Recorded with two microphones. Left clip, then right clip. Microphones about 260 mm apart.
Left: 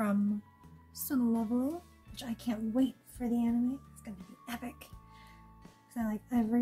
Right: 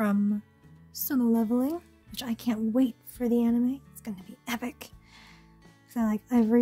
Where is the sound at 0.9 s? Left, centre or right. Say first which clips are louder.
Right 6 dB; right.